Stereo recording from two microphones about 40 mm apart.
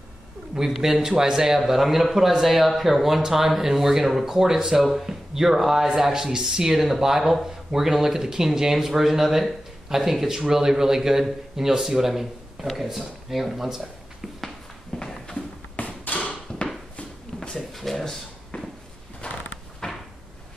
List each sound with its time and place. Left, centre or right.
0.6 s a man's voice: centre
15.0 s walk: centre
15.3 s a sound: left
17.4 s a sound: centre
19.2 s creak: left
19.8 s cupboard open or close: left